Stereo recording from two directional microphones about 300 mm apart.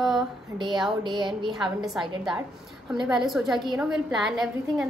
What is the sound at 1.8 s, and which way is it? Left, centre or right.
A woman's voice, centre.